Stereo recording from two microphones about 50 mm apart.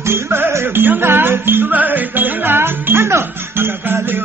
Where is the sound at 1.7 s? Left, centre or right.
Right.